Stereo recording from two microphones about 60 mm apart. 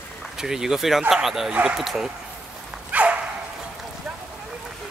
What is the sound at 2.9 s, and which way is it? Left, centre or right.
Dog, right.